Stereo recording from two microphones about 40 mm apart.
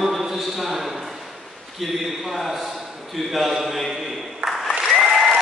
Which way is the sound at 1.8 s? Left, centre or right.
Centre.